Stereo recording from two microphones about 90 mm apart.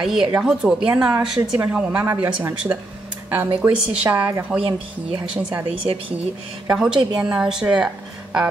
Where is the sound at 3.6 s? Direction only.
20° right (ahead or behind).